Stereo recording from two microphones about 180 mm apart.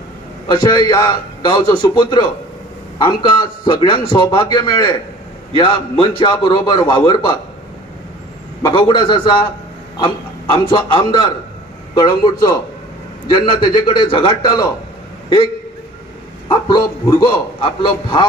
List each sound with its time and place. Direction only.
0.5 s a man's voice: 20° left (ahead or behind)
8.6 s a man's voice: 25° left (ahead or behind)
10.7 s a man's voice: 25° left (ahead or behind)
16.4 s a man's voice: 20° left (ahead or behind)